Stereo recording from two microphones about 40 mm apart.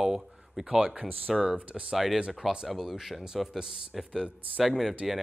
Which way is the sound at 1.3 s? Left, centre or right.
Centre.